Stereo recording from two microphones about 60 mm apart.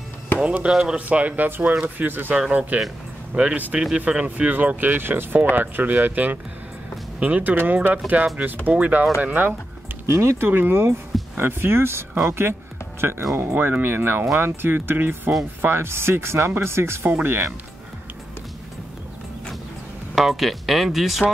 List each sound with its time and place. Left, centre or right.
0.4 s speech: centre
2.3 s speech: right
4.5 s speech: right
7.5 s speech: right
10.0 s speech: right
20.2 s speech: centre